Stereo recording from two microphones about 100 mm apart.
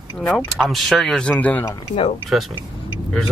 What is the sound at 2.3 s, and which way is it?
Speech, centre (ahead or behind).